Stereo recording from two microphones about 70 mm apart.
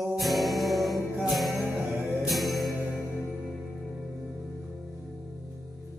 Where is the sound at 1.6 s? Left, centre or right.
Right.